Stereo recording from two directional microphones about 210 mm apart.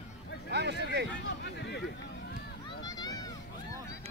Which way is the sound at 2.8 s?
15° left (ahead or behind).